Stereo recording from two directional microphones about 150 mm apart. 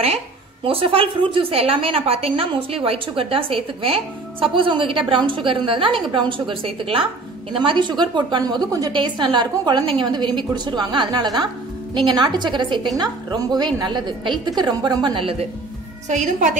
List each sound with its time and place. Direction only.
0.7 s a woman's voice: 40° right (ahead or behind)
16.1 s a woman's voice: 55° right (ahead or behind)